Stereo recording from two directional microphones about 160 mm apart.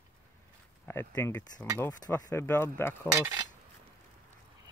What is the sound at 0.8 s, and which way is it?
Speech, 15° left (ahead or behind).